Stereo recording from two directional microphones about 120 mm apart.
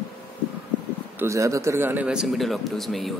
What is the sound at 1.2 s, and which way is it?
Speech, 25° right (ahead or behind).